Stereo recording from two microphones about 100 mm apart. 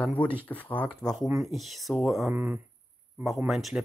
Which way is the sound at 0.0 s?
15° left (ahead or behind).